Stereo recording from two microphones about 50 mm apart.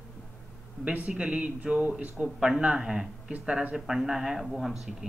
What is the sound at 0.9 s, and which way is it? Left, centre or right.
Speech, right.